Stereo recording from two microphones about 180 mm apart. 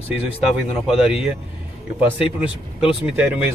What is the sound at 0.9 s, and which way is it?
Speech, 5° right (ahead or behind).